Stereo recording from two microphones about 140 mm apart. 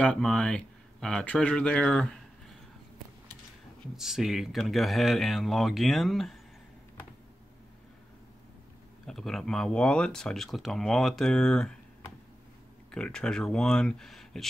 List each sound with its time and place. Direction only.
0.0 s speech: 5° left (ahead or behind)
3.9 s speech: 5° right (ahead or behind)
9.0 s speech: centre (ahead or behind)
12.9 s speech: 5° left (ahead or behind)